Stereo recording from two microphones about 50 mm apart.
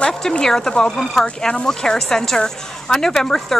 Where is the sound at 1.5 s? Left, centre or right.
Centre.